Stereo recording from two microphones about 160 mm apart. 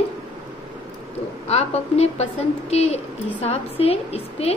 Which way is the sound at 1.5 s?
40° left (ahead or behind).